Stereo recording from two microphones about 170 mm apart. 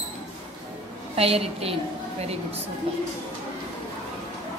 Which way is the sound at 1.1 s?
35° right (ahead or behind).